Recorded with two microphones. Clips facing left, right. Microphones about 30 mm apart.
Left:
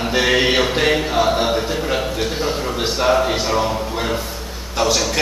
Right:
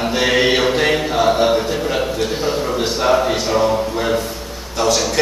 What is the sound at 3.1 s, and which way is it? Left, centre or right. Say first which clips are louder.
A man's voice: right 1 dB; centre.